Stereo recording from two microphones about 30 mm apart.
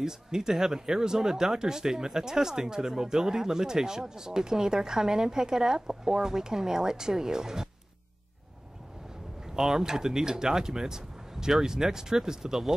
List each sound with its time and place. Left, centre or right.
0.0 s speech: centre
9.5 s speech: centre